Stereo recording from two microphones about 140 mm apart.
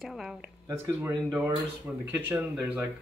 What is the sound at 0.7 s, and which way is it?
Speech, 15° right (ahead or behind).